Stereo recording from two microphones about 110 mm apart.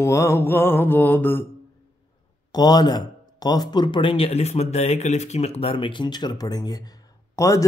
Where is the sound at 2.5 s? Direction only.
40° left (ahead or behind).